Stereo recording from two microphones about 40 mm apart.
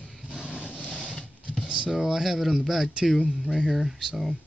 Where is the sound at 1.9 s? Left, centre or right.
Centre.